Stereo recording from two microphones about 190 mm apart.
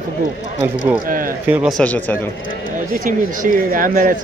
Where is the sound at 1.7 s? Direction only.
10° left (ahead or behind).